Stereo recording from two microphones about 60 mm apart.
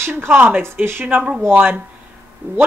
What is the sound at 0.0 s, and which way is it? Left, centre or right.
Speech, right.